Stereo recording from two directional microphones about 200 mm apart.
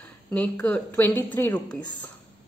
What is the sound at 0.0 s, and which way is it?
Speech, 5° left (ahead or behind).